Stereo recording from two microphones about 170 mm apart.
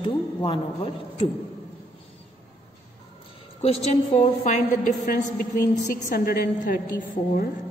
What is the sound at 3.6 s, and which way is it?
Speech, 35° left (ahead or behind).